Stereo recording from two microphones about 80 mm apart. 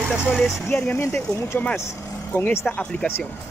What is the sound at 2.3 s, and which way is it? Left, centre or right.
Speech, left.